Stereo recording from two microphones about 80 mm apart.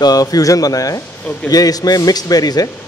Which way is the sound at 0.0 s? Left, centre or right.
Left.